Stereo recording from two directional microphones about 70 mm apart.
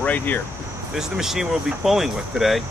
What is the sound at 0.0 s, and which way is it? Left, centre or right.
Speech, left.